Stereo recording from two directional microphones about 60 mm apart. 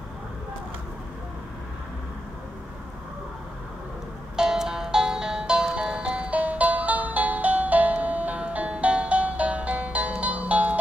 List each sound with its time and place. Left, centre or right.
4.4 s music: centre